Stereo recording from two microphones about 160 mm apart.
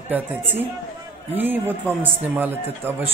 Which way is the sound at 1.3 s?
10° right (ahead or behind).